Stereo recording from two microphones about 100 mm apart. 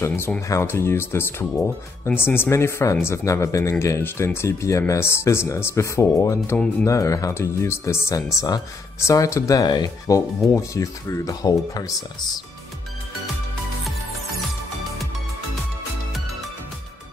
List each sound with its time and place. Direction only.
0.0 s speech: 25° left (ahead or behind)